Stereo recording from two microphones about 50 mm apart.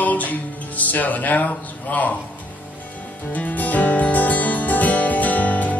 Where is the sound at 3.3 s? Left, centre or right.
Left.